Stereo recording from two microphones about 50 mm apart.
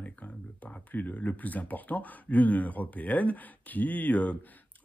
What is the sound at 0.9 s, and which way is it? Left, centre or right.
Speech, left.